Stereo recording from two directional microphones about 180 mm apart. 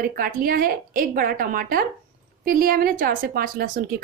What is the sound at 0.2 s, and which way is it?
Speech, 50° right (ahead or behind).